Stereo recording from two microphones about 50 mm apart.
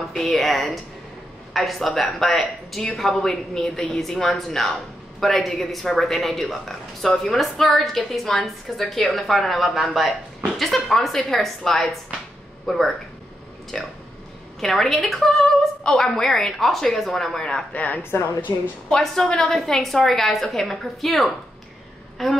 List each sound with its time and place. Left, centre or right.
0.1 s speech: centre
15.8 s a woman's voice: centre
17.7 s a woman's voice: left
18.9 s speech: centre